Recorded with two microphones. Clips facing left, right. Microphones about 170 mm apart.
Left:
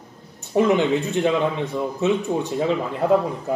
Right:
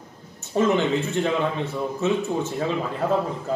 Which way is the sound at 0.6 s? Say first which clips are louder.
Left 3 dB; 15° left (ahead or behind).